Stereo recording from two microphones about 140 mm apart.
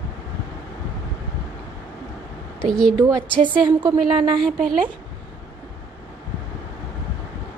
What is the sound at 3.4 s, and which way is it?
Speech, 30° right (ahead or behind).